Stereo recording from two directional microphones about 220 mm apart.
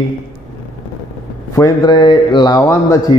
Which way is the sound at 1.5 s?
15° left (ahead or behind).